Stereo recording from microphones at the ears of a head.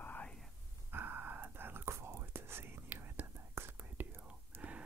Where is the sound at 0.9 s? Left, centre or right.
Right.